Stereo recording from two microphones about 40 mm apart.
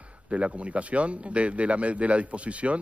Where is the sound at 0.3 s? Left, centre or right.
Right.